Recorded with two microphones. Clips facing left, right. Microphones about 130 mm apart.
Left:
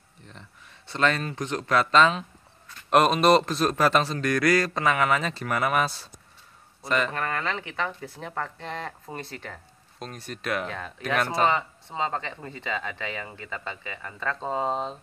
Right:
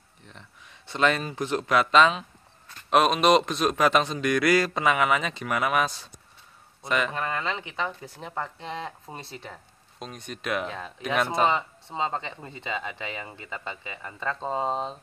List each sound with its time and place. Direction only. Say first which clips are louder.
0.9 s speech: right 1 dB; 10° right (ahead or behind)
4.3 s speech: right 1 dB; 20° right (ahead or behind)
4.7 s speech: even; 5° right (ahead or behind)
6.9 s speech: left 1 dB; 5° right (ahead or behind)
7.2 s speech: even; 20° right (ahead or behind)
9.9 s speech: left 1 dB; centre (ahead or behind)
12.4 s speech: left 1 dB; 20° right (ahead or behind)
14.6 s speech: left 1 dB; centre (ahead or behind)